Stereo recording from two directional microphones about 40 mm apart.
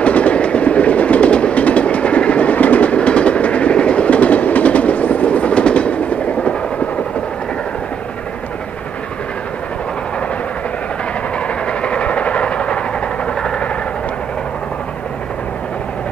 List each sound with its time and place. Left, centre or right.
0.0 s train: left
11.3 s train: left
13.3 s vehicle: centre